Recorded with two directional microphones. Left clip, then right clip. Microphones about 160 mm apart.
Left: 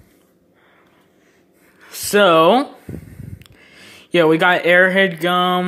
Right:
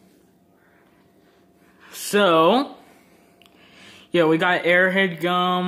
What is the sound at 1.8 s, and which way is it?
Speech, 15° left (ahead or behind).